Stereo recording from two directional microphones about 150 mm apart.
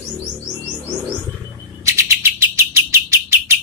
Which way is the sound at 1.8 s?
20° right (ahead or behind).